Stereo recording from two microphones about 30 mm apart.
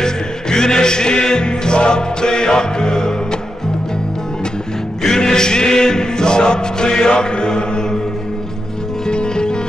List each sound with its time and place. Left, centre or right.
0.0 s music: left
5.0 s music: centre
9.0 s music: left